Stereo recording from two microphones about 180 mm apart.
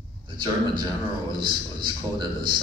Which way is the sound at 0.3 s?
25° right (ahead or behind).